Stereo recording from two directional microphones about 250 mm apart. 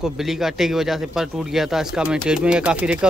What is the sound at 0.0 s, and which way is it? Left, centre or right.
Speech, centre.